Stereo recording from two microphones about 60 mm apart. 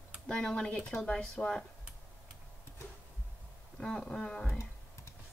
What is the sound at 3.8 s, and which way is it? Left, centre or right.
Speech, centre.